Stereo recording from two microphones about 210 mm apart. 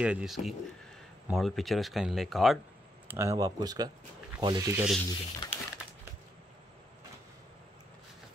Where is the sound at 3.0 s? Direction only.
10° right (ahead or behind).